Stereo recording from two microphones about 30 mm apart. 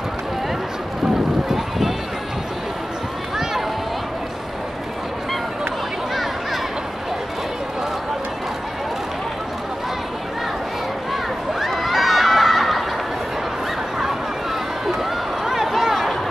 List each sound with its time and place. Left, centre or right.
1.0 s run: centre
11.6 s run: centre
15.4 s a sound: centre